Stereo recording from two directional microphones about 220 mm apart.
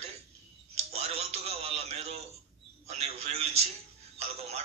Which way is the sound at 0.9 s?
30° right (ahead or behind).